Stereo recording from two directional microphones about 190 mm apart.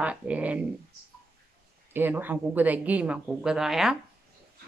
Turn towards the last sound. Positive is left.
turn(degrees=0)  # may be behind; listen again after turning